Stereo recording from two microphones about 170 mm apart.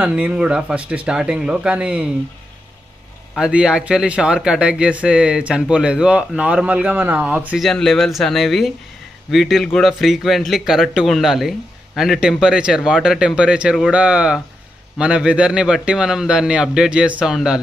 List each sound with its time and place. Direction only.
0.0 s speech: 10° right (ahead or behind)
3.3 s speech: 5° right (ahead or behind)